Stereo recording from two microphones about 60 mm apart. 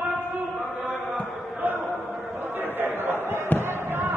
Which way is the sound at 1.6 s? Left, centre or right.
Right.